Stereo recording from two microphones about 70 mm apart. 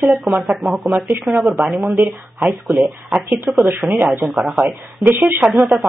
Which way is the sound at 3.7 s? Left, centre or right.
Right.